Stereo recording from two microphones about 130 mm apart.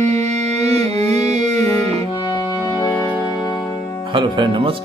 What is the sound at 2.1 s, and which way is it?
Music, 35° left (ahead or behind).